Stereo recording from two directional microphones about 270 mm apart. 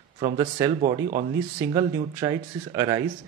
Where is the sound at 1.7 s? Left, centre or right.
Centre.